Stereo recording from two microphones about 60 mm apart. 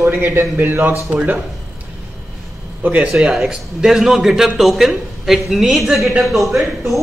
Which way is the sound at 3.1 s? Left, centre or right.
Centre.